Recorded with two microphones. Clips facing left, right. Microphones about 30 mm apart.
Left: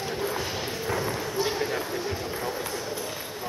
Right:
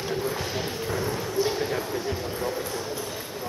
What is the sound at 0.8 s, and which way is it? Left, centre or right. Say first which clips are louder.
Basketball bounce: even; centre.